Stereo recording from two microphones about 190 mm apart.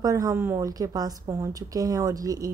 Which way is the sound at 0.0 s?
20° right (ahead or behind).